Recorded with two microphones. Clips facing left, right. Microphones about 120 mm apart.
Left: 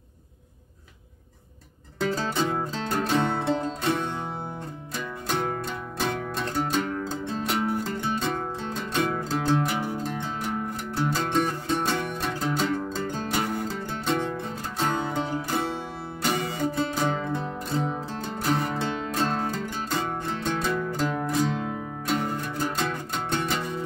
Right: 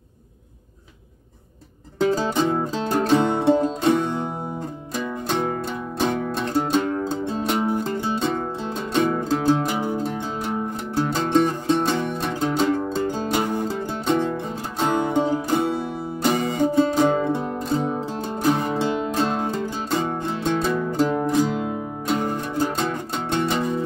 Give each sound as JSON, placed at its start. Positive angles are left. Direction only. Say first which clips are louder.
{"t": 2.1, "sound": "music", "louder": "right 5 dB", "side_deg": -20}
{"t": 5.3, "sound": "music", "louder": "right 3 dB", "side_deg": -20}